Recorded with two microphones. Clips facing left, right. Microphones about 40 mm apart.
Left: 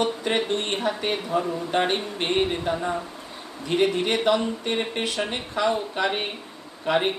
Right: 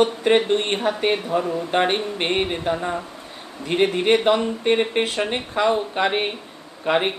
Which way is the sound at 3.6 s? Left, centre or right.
Right.